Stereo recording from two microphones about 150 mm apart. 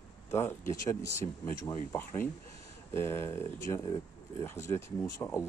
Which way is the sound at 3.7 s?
30° left (ahead or behind).